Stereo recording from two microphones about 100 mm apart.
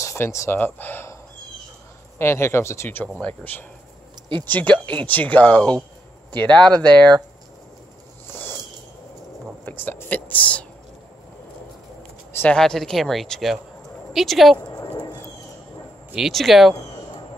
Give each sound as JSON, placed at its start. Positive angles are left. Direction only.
{"t": 0.0, "sound": "speech", "side_deg": 30}
{"t": 2.1, "sound": "speech", "side_deg": 25}
{"t": 8.3, "sound": "a sound", "side_deg": 25}
{"t": 9.7, "sound": "speech", "side_deg": 20}
{"t": 12.5, "sound": "speech", "side_deg": 5}
{"t": 14.8, "sound": "a sound", "side_deg": 45}
{"t": 16.2, "sound": "speech", "side_deg": 0}